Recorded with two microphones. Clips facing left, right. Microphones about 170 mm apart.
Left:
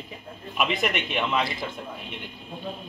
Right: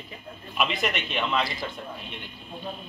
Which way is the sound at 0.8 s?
10° left (ahead or behind).